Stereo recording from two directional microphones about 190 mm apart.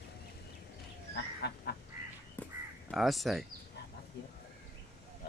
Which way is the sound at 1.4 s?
60° left (ahead or behind).